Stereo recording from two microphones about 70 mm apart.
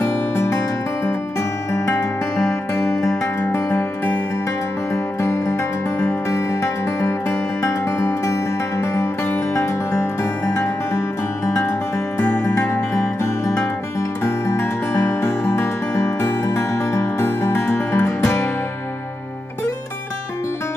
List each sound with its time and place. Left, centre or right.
0.4 s music: left
1.7 s music: left
4.9 s music: left
12.2 s music: centre
12.9 s music: left